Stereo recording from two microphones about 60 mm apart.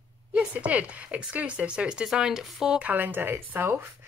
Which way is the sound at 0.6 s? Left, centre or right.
Right.